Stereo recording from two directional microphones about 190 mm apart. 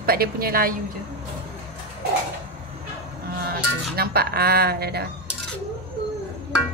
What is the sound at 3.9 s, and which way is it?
Speech, 55° right (ahead or behind).